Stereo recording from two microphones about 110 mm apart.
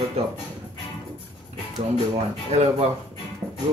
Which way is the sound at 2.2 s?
70° right (ahead or behind).